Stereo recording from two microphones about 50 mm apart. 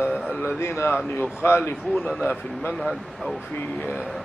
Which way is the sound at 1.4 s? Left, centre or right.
Left.